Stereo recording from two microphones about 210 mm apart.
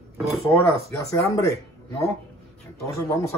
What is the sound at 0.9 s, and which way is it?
Speech, 15° left (ahead or behind).